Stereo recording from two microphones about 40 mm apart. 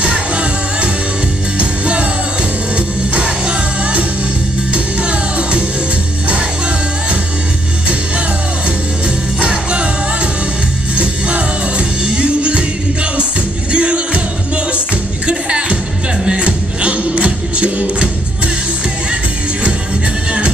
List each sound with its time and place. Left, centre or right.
0.0 s music: right
9.4 s music: right
11.0 s music: right
15.2 s music: right